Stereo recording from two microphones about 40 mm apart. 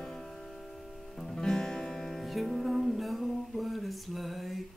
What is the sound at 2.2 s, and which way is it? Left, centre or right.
Music, centre.